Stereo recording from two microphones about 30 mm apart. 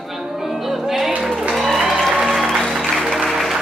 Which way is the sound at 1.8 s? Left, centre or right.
Centre.